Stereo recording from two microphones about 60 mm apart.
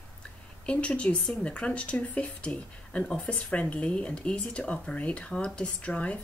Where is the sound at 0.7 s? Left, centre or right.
Centre.